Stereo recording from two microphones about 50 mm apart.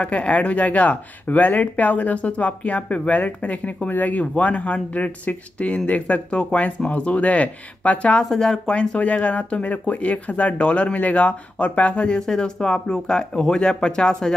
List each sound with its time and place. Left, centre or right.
0.0 s speech: left
8.2 s speech: centre
8.7 s speech: left